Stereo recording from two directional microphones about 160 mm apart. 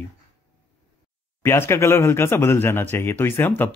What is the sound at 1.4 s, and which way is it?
Speech, 15° left (ahead or behind).